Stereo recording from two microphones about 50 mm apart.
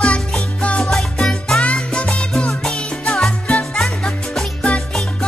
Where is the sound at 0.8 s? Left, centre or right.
Centre.